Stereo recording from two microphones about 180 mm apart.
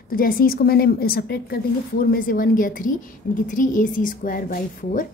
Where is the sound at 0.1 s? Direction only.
55° left (ahead or behind).